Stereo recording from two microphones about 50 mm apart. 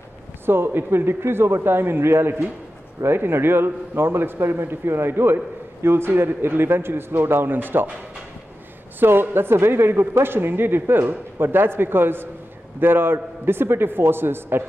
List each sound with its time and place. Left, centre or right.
0.5 s a man's voice: right
9.0 s a man's voice: right